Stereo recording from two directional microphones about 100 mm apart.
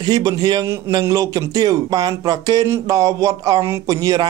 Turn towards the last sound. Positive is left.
turn(degrees=-35)  # may be behind; listen again after turning